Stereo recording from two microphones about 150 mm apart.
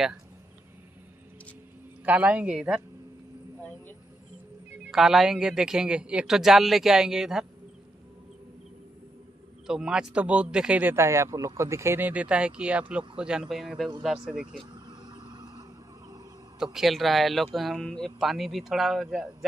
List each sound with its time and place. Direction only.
2.0 s speech: 10° right (ahead or behind)
4.9 s a man's voice: centre (ahead or behind)
9.7 s a man's voice: 5° right (ahead or behind)
14.6 s vehicle: 30° right (ahead or behind)
16.5 s a man's voice: 5° right (ahead or behind)